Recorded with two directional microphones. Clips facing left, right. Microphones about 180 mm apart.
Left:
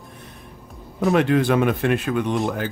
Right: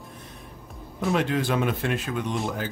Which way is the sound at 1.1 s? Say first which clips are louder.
Left 6 dB; 60° left (ahead or behind).